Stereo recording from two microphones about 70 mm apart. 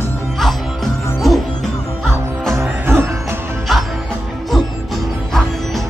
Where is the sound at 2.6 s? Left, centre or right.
Right.